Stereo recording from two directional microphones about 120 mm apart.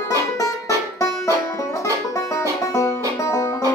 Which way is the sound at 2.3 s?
25° left (ahead or behind).